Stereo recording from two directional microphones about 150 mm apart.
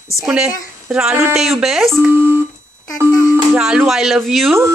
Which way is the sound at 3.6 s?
5° right (ahead or behind).